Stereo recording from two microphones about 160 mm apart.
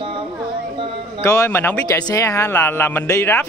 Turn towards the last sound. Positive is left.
turn(degrees=15)  # may be behind; listen again after turning